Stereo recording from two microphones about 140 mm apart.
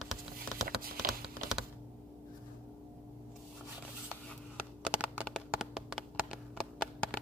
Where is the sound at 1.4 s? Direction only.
Centre (ahead or behind).